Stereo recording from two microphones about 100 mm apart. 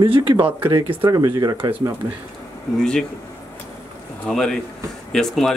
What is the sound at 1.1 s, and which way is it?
Speech, 35° right (ahead or behind).